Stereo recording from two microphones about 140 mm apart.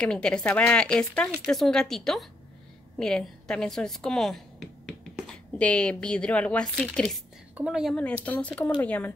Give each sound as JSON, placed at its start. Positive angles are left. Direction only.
{"t": 0.0, "sound": "a woman's voice", "side_deg": 5}
{"t": 7.5, "sound": "a woman's voice", "side_deg": -5}
{"t": 7.9, "sound": "a woman's voice", "side_deg": 10}